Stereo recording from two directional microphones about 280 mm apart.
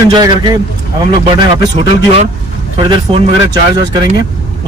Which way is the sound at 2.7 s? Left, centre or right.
Centre.